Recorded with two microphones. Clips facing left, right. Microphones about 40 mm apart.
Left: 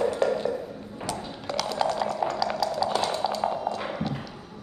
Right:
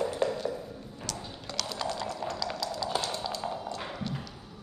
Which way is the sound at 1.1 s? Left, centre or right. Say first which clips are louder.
Left 7 dB; centre.